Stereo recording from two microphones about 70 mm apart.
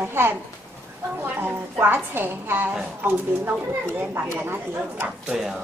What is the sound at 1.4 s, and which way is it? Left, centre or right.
A woman's voice, right.